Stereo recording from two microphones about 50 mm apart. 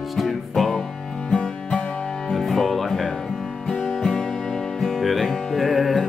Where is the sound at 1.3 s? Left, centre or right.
Centre.